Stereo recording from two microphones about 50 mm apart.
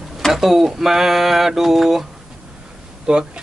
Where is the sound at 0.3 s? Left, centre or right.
Centre.